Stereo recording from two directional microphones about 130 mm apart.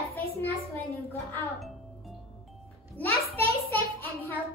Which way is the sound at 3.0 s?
20° left (ahead or behind).